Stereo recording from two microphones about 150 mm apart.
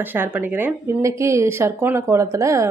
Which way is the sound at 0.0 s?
15° right (ahead or behind).